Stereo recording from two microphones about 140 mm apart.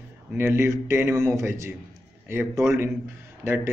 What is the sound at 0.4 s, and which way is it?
A man's voice, 15° right (ahead or behind).